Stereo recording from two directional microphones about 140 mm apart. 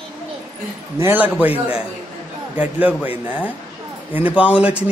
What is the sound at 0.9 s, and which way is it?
A man's voice, 15° right (ahead or behind).